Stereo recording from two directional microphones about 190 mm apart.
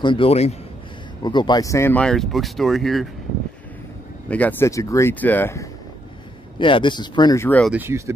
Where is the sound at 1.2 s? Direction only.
25° left (ahead or behind); by 3.1 s centre (ahead or behind).